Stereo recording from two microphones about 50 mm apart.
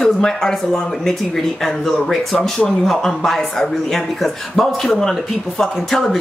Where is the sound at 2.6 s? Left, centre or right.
Centre.